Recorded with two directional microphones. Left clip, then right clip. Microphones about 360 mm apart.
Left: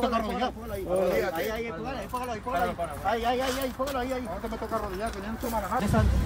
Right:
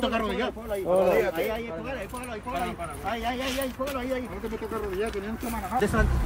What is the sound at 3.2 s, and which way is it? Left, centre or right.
Speech, centre.